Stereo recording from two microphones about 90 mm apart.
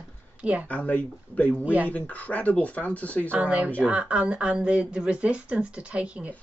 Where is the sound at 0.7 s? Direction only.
15° left (ahead or behind).